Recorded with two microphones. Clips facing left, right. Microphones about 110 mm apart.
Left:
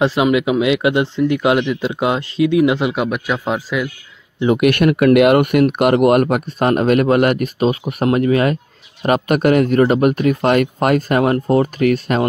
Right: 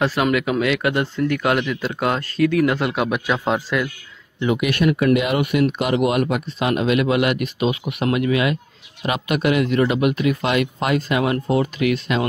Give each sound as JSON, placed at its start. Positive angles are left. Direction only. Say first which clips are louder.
{"t": 0.0, "sound": "speech", "louder": "left 4 dB", "side_deg": 20}
{"t": 2.9, "sound": "speech", "louder": "left 2 dB", "side_deg": 5}
{"t": 4.6, "sound": "speech", "louder": "left 6 dB", "side_deg": 60}